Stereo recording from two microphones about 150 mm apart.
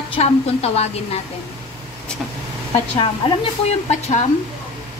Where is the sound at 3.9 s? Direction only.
50° left (ahead or behind).